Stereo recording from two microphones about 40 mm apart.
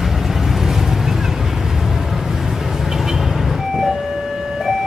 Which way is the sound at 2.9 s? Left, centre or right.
Centre.